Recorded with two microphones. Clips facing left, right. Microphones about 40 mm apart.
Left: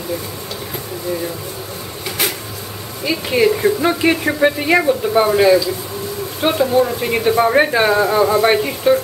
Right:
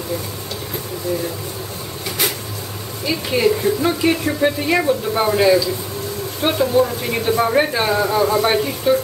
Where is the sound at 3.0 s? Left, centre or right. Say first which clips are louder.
Left 2 dB; centre.